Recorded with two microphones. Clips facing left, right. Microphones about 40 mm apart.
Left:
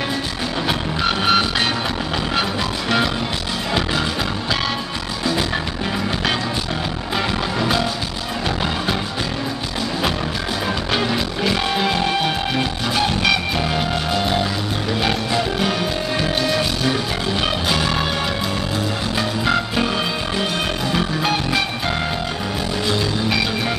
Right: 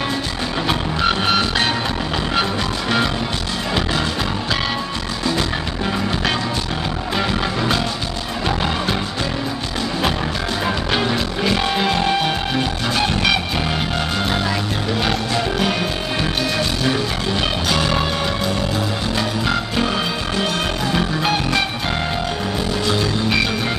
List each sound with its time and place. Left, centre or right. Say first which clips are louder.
0.7 s music: right 2 dB; centre
7.2 s music: even; centre
10.9 s music: right 1 dB; centre
15.0 s music: left 1 dB; centre
19.1 s music: left 2 dB; centre
20.9 s music: right 1 dB; centre
22.8 s music: even; centre